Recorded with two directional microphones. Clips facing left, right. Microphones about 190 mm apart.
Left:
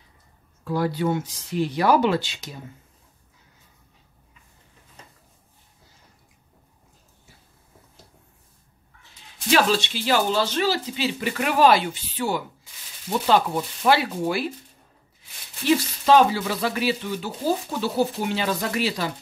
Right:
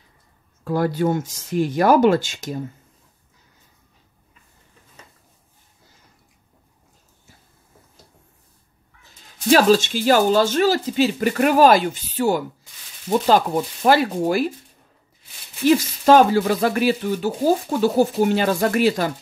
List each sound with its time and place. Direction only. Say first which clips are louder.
0.7 s speech: right 3 dB; 50° right (ahead or behind)
9.0 s speech: right 8 dB; 40° right (ahead or behind)
16.1 s speech: right 4 dB; 50° right (ahead or behind)